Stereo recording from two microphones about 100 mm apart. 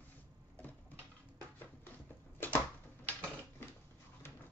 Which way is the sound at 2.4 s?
20° left (ahead or behind).